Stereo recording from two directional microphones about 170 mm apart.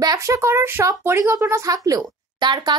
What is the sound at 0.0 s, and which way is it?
A woman's voice, 20° right (ahead or behind).